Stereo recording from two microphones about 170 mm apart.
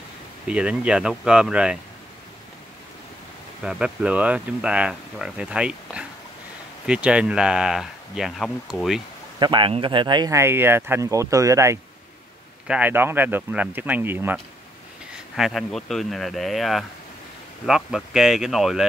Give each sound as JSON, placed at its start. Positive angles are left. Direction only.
{"t": 0.5, "sound": "speech", "side_deg": -5}
{"t": 3.6, "sound": "speech", "side_deg": -5}
{"t": 9.4, "sound": "speech", "side_deg": -25}
{"t": 15.3, "sound": "speech", "side_deg": 0}